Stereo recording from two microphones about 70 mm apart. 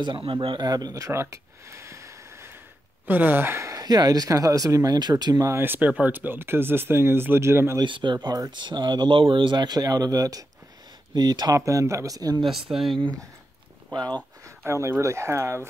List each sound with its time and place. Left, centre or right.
0.0 s speech: right
1.1 s a sound: right
3.1 s speech: right
3.7 s speech: right
5.5 s speech: right
8.0 s speech: right
11.1 s speech: right
11.5 s speech: right
12.4 s speech: centre
14.7 s speech: right